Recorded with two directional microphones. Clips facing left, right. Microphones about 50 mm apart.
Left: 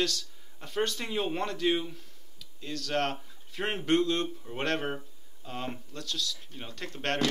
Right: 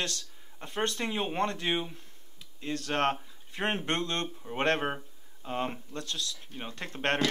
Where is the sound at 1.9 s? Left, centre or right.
Right.